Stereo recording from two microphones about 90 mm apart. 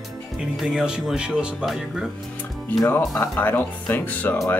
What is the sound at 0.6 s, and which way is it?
Speech, 5° right (ahead or behind).